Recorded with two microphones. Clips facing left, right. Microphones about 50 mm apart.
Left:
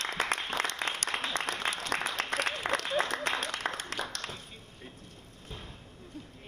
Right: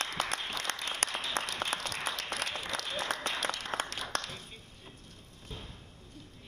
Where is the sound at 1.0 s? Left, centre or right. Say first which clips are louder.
Left 1 dB; left.